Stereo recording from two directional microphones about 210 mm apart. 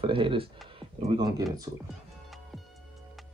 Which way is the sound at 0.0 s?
25° right (ahead or behind).